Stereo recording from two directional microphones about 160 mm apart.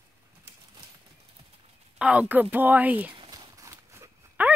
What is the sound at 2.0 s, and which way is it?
Speech, 10° right (ahead or behind).